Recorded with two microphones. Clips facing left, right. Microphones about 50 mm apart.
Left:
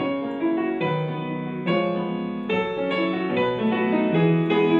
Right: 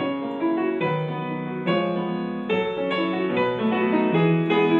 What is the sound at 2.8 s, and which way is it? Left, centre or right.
Music, right.